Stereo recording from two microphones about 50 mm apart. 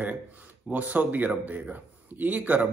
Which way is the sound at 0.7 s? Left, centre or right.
Right.